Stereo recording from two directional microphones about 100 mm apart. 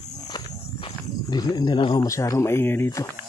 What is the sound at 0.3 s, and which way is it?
Walk, 60° left (ahead or behind).